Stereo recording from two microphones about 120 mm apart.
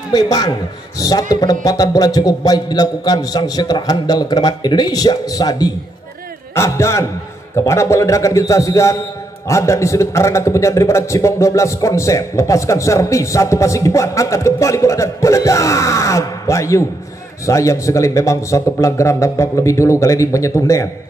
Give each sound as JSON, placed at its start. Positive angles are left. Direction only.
{"t": 0.1, "sound": "a man's voice", "side_deg": 35}